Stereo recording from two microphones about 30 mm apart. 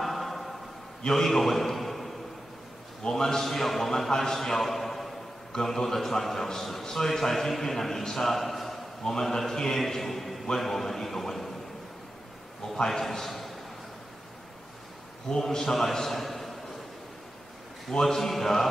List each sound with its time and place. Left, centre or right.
0.0 s music: centre
1.1 s a man's voice: centre
3.1 s a man's voice: centre
8.3 s a man's voice: centre
12.7 s a man's voice: centre
15.2 s a man's voice: centre
18.0 s a man's voice: centre